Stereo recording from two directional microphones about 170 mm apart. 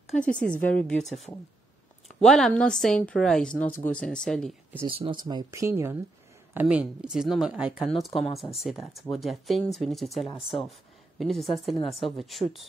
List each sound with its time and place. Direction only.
0.1 s speech: 5° left (ahead or behind)
4.8 s speech: 30° right (ahead or behind); by 12.6 s centre (ahead or behind)